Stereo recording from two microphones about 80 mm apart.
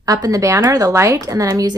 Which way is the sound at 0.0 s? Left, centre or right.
Right.